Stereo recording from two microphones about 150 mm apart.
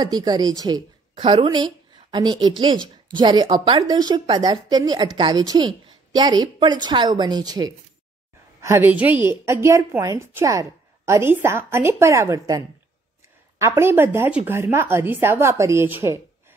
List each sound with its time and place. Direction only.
0.0 s a woman's voice: 25° right (ahead or behind)
1.1 s a woman's voice: 35° right (ahead or behind); by 16.2 s 15° right (ahead or behind)